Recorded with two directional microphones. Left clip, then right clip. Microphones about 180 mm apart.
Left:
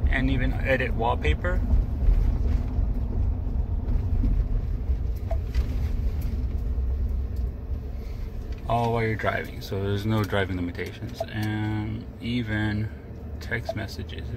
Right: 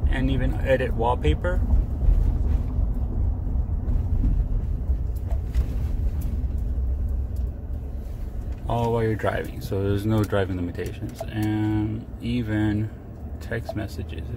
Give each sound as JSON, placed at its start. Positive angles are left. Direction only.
{"t": 0.1, "sound": "speech", "side_deg": -35}
{"t": 8.6, "sound": "speech", "side_deg": -30}